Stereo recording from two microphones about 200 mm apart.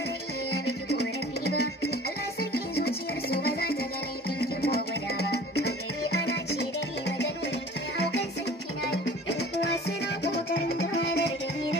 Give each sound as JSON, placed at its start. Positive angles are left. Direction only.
{"t": 0.8, "sound": "music", "side_deg": 55}
{"t": 8.9, "sound": "music", "side_deg": 55}